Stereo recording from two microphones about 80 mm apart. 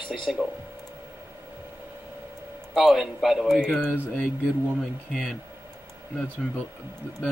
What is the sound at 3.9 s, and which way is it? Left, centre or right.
Speech, left.